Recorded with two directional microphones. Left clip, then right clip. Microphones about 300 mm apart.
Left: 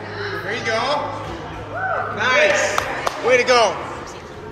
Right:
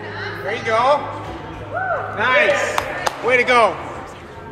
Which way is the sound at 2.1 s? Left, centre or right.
Right.